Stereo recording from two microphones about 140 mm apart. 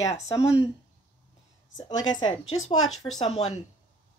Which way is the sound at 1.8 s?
30° left (ahead or behind).